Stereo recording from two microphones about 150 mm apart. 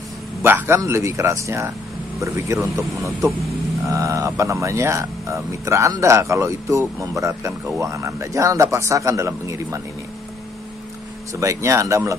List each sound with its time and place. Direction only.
0.4 s speech: 15° right (ahead or behind)
11.3 s speech: 20° right (ahead or behind)